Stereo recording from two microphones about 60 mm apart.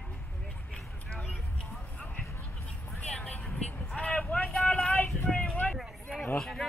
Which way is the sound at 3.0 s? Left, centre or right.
Centre.